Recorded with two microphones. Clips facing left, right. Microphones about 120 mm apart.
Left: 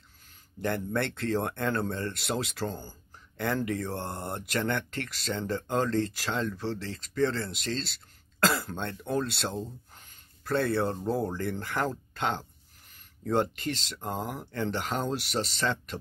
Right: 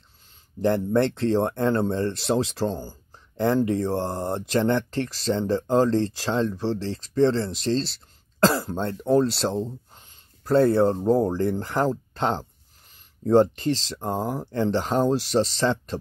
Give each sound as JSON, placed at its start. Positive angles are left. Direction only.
{"t": 0.7, "sound": "speech", "side_deg": -30}
{"t": 9.9, "sound": "a sound", "side_deg": -40}
{"t": 10.8, "sound": "speech", "side_deg": -25}
{"t": 11.4, "sound": "speech", "side_deg": -40}